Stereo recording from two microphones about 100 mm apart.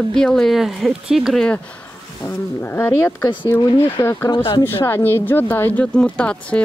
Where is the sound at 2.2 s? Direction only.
20° left (ahead or behind).